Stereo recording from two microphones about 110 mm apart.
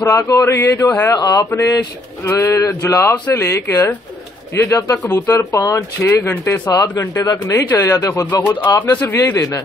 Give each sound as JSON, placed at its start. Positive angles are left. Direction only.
{"t": 0.0, "sound": "speech", "side_deg": 25}
{"t": 1.1, "sound": "mantra", "side_deg": 35}
{"t": 2.2, "sound": "speech", "side_deg": 25}
{"t": 6.0, "sound": "speech", "side_deg": 20}
{"t": 7.2, "sound": "speech", "side_deg": 30}